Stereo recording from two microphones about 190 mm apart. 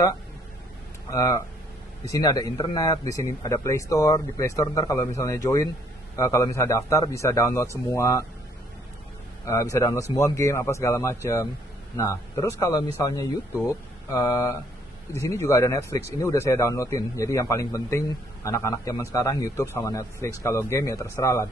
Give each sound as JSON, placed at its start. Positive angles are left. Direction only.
{"t": 1.1, "sound": "a man's voice", "side_deg": 15}
{"t": 9.5, "sound": "speech", "side_deg": 15}